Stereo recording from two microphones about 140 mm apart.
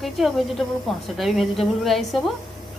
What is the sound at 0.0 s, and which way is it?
A woman's voice, centre (ahead or behind).